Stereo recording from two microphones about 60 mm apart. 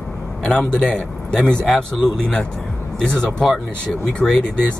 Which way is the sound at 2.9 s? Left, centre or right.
Centre.